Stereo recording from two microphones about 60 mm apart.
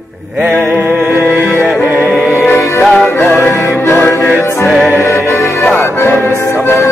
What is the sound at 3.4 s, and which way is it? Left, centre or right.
Music, left.